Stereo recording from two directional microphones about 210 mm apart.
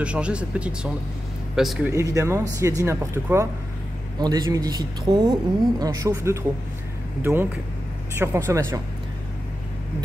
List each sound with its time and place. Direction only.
0.0 s speech: 5° right (ahead or behind)
1.9 s speech: 15° right (ahead or behind)